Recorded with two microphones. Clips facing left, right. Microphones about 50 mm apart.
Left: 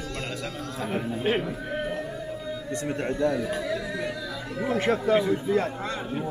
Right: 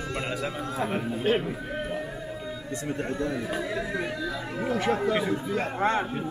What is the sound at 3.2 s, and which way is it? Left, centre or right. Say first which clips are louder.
Speech: left 3 dB; right.